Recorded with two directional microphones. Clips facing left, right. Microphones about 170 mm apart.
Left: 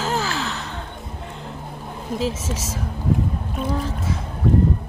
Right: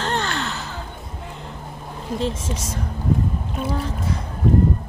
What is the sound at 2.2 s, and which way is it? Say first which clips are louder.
Speech: even; 5° left (ahead or behind).